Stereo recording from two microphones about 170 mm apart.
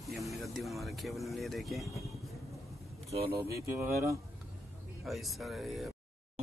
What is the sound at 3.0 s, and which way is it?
Speech, 35° right (ahead or behind).